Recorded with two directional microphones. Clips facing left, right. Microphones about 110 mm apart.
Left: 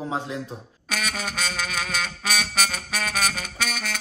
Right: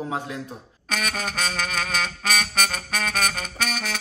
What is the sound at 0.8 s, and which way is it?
Music, centre (ahead or behind).